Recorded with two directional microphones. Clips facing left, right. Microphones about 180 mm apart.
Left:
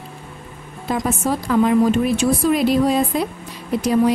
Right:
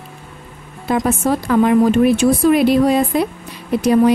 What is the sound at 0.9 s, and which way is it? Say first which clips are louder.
Speech: right 4 dB; 60° right (ahead or behind).